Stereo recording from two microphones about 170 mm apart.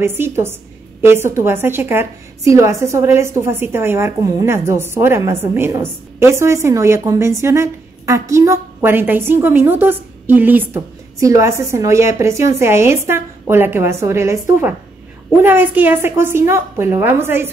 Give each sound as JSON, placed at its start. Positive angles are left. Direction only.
{"t": 0.0, "sound": "a woman's voice", "side_deg": -15}